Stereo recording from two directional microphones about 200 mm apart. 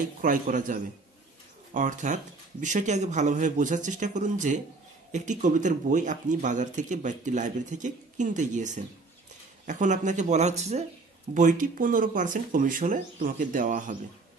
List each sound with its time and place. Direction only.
0.2 s speech: 40° right (ahead or behind)